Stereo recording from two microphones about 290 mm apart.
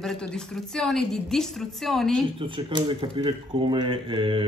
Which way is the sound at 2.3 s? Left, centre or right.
Centre.